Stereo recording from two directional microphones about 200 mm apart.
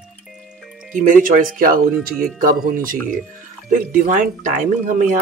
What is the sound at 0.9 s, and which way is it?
Speech, 40° right (ahead or behind).